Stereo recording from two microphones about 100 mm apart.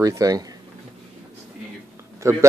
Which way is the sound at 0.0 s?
35° right (ahead or behind).